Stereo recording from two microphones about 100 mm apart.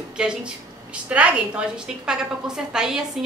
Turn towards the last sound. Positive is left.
turn(degrees=-5)  # may be behind; listen again after turning